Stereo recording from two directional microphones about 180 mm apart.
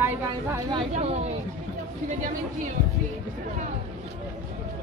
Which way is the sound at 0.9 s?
40° right (ahead or behind).